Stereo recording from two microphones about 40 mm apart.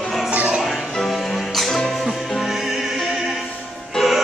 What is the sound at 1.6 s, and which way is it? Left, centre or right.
Music, centre.